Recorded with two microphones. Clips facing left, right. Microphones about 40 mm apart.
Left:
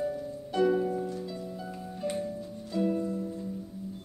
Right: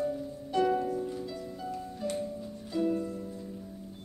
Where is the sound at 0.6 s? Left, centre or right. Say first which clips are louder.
Left 3 dB; centre.